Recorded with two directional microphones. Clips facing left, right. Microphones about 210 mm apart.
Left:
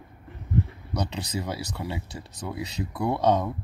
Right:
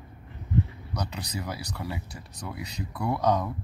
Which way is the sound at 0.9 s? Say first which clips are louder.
Left 4 dB; 25° left (ahead or behind).